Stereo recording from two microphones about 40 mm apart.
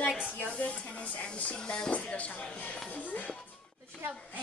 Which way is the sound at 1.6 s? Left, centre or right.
Centre.